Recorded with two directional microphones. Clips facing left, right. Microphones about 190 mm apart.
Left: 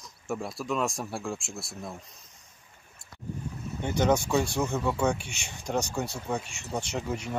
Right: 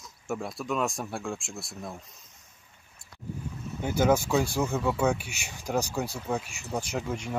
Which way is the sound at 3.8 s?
5° right (ahead or behind).